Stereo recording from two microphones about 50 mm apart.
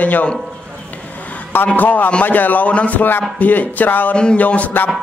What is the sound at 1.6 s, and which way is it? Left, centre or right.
A man's voice, left.